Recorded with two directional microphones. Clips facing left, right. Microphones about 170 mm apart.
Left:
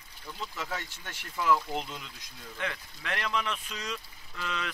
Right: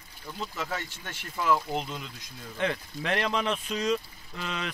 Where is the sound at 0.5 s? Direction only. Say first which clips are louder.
Right 3 dB; 5° right (ahead or behind).